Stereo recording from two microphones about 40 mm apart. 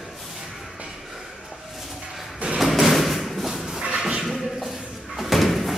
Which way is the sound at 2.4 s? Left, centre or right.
Right.